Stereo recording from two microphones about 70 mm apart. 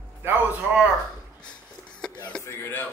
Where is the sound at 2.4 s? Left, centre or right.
Left.